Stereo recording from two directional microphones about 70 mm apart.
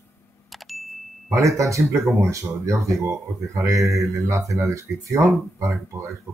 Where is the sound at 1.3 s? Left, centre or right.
Right.